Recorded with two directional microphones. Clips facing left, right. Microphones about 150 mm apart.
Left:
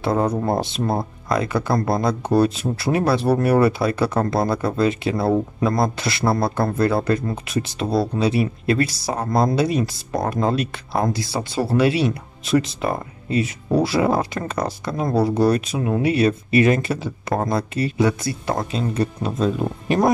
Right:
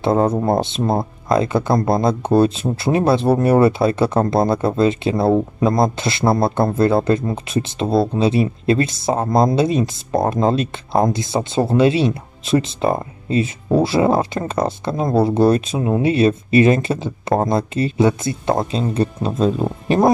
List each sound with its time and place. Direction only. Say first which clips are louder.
0.0 s speech: right 4 dB; 25° right (ahead or behind)